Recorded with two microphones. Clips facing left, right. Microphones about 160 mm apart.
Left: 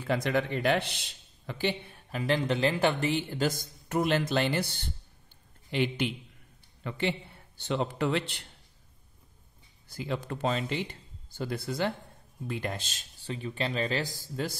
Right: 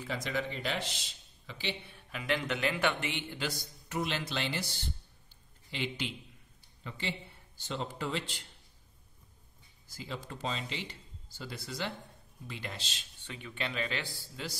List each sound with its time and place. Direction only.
0.0 s a man's voice: 60° left (ahead or behind)
9.8 s a man's voice: 60° left (ahead or behind)
13.2 s speech: 35° left (ahead or behind)